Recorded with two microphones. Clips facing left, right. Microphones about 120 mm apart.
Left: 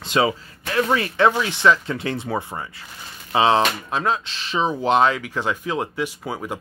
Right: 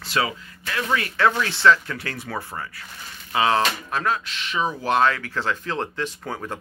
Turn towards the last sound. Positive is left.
turn(degrees=10)  # may be behind; listen again after turning